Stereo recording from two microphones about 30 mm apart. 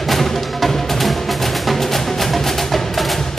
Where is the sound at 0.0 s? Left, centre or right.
Centre.